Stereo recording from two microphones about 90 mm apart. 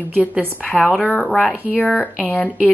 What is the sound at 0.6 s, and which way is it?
Speech, 15° left (ahead or behind).